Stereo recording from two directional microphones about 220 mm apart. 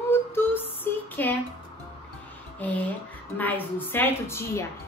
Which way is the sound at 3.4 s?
10° left (ahead or behind).